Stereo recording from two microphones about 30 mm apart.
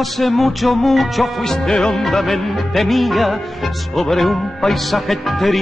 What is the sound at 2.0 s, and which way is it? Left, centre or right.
Speech, centre.